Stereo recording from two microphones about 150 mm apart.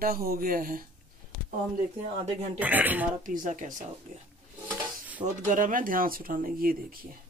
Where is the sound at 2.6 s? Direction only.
10° right (ahead or behind).